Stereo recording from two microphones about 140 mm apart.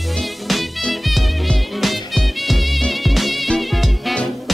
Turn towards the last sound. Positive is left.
turn(degrees=0)  # may be behind; listen again after turning